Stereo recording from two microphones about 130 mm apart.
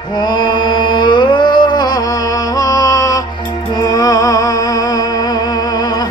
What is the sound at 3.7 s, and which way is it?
Music, 30° left (ahead or behind).